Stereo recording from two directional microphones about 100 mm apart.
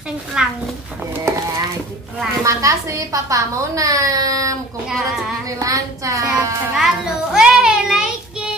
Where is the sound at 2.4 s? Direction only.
30° right (ahead or behind).